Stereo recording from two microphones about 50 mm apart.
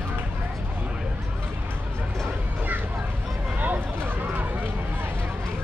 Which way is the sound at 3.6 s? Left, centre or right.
Right.